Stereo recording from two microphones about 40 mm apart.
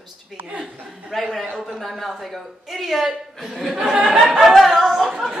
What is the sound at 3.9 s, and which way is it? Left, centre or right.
Speech, right.